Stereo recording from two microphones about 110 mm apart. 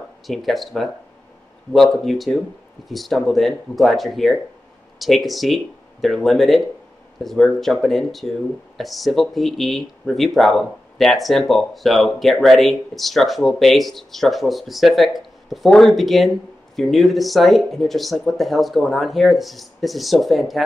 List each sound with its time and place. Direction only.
0.3 s speech: centre (ahead or behind)